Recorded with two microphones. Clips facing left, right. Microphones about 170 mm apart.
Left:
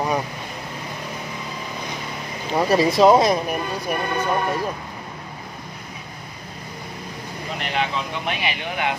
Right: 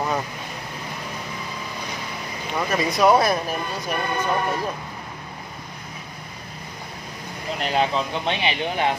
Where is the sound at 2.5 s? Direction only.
35° left (ahead or behind).